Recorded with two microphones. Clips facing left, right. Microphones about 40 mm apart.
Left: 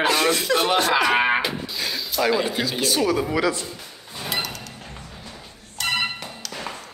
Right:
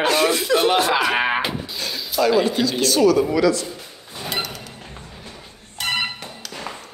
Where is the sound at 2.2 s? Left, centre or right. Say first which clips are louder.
Right 4 dB; centre; by 3.7 s left.